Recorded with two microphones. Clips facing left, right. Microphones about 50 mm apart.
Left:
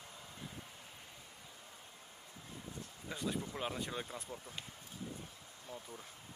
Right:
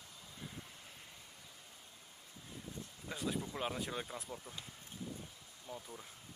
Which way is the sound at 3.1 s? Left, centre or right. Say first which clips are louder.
Even; centre.